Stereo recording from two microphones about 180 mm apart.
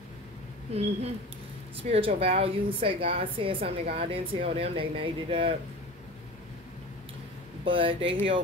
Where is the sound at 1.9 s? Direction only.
30° right (ahead or behind).